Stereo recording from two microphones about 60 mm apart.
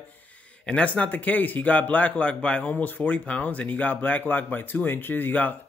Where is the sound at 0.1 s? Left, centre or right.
Left.